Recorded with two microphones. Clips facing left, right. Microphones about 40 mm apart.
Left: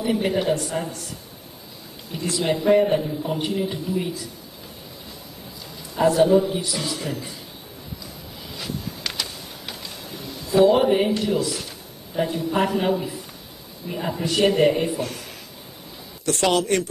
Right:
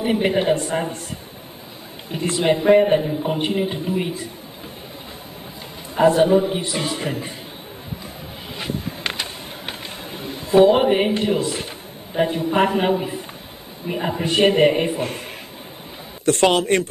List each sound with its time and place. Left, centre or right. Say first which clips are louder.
0.0 s a man's voice: right 3 dB; right
5.9 s a man's voice: right 2 dB; right
8.5 s a sound: right 4 dB; right
12.1 s a man's voice: right 4 dB; right
16.3 s a man's voice: right 4 dB; right